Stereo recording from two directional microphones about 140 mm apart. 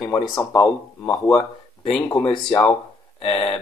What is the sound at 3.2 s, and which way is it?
Speech, 45° left (ahead or behind).